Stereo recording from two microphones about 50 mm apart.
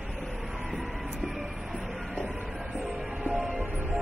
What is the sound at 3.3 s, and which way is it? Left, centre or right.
Music, right.